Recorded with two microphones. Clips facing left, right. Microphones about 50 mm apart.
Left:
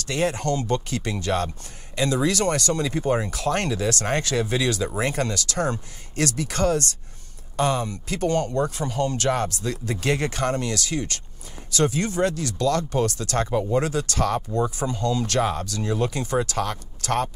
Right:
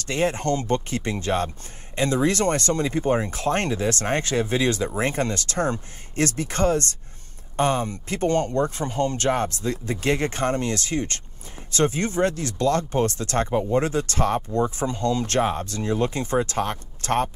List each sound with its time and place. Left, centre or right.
0.0 s speech: right